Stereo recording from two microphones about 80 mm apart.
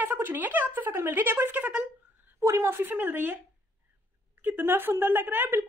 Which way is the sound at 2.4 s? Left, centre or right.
Right.